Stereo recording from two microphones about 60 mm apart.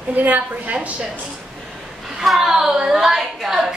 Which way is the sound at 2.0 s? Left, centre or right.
Centre.